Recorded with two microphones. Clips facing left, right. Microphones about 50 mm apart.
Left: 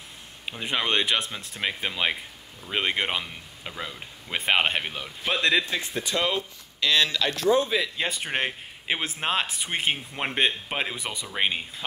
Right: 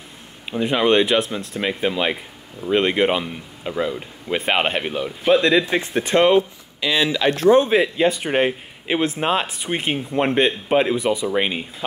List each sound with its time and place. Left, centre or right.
0.5 s speech: centre
5.7 s speech: right
6.8 s speech: centre
7.2 s speech: right
8.0 s speech: centre